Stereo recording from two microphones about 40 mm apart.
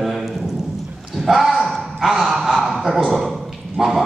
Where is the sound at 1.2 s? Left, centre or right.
Centre.